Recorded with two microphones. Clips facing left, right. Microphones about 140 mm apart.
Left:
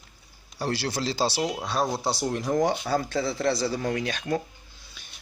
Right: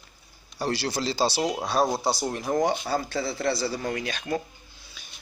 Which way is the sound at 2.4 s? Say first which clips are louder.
Even; 20° right (ahead or behind).